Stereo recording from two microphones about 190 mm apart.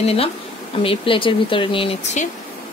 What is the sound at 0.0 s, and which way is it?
A woman's voice, 30° left (ahead or behind).